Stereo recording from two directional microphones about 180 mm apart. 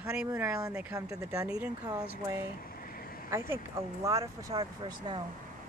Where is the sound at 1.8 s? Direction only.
20° right (ahead or behind).